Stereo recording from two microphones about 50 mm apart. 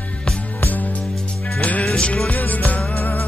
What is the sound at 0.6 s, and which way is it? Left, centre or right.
Music, left.